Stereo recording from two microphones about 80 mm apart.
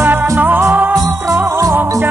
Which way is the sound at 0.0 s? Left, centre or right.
Right.